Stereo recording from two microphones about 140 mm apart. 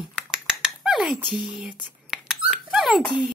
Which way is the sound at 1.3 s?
35° left (ahead or behind).